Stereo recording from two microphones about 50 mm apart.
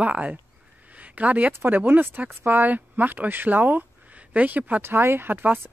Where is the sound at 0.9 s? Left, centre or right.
Right.